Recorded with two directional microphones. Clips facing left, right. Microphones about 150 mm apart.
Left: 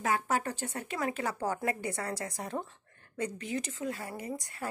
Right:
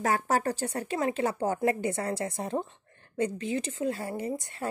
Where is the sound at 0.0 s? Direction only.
40° right (ahead or behind).